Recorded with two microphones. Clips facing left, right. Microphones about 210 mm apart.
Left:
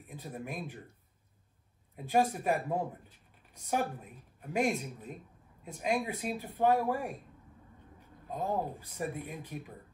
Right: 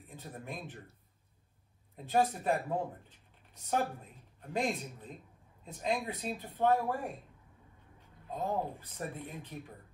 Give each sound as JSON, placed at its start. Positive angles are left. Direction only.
{"t": 0.1, "sound": "speech", "side_deg": 10}
{"t": 2.0, "sound": "speech", "side_deg": 10}
{"t": 8.3, "sound": "speech", "side_deg": 10}